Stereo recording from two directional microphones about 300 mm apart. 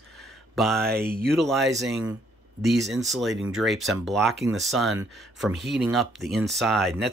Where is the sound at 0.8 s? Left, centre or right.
Right.